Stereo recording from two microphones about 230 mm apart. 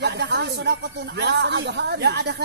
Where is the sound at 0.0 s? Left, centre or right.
Right.